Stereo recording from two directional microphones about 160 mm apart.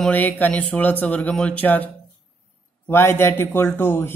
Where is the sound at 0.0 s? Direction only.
10° left (ahead or behind).